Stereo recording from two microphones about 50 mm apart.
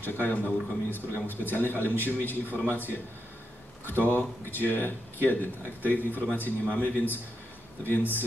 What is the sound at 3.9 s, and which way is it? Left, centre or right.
Speech, left.